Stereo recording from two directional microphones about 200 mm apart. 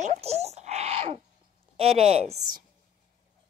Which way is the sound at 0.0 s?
35° right (ahead or behind).